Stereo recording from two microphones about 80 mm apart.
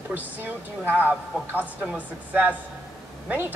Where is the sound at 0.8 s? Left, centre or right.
Right.